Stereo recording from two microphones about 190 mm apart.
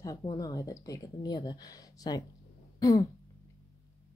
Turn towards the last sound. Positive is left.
turn(degrees=20)  # may be behind; listen again after turning